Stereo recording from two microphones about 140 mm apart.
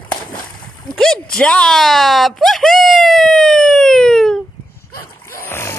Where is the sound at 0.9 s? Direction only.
5° left (ahead or behind).